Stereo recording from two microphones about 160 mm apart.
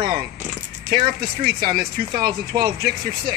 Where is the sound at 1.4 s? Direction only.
65° right (ahead or behind).